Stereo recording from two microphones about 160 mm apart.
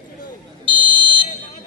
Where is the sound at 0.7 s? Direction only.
30° right (ahead or behind).